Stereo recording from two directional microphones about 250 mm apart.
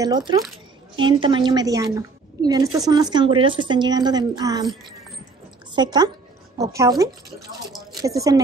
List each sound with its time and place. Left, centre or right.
0.0 s a woman's voice: centre
5.8 s a woman's voice: centre
7.9 s speech: centre